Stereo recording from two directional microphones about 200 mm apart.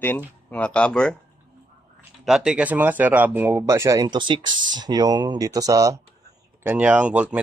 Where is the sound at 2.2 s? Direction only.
5° right (ahead or behind).